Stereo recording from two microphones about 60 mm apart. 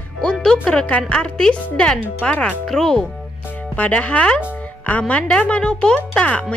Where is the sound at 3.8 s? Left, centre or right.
Left.